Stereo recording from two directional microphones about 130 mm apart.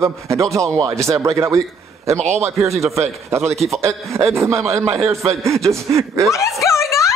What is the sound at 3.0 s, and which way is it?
A man's voice, 20° right (ahead or behind).